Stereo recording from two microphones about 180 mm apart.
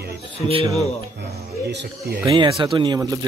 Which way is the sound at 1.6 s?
60° right (ahead or behind).